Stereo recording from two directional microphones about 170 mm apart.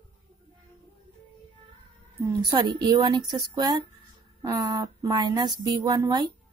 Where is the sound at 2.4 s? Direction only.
25° right (ahead or behind).